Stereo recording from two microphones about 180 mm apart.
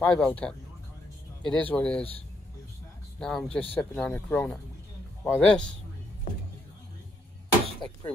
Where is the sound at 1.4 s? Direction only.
5° left (ahead or behind).